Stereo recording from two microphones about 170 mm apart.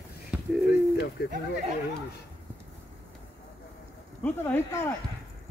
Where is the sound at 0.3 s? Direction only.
5° right (ahead or behind).